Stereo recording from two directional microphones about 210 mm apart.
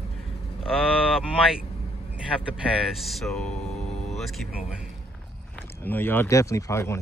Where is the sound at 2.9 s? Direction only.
Centre (ahead or behind).